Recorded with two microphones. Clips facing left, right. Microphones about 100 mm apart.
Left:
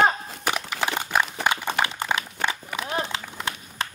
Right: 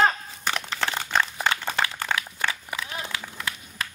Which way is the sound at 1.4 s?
20° left (ahead or behind).